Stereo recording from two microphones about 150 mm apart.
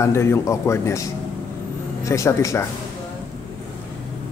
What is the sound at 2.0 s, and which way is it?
Speech, 20° left (ahead or behind).